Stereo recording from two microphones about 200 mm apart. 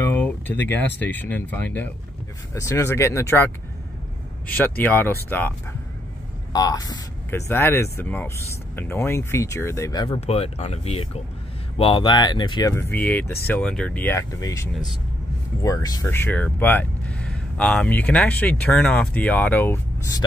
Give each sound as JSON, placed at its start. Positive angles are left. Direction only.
{"t": 0.0, "sound": "speech", "side_deg": 10}
{"t": 6.5, "sound": "speech", "side_deg": 20}